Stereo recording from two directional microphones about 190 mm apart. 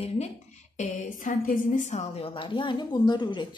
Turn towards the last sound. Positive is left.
turn(degrees=25)  # may be behind; listen again after turning